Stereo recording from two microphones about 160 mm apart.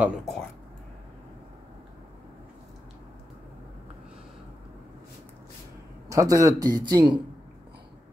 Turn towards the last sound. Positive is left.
turn(degrees=-25)  # may be behind; listen again after turning